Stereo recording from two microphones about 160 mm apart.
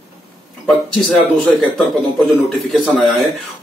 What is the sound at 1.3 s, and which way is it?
A man's voice, centre (ahead or behind).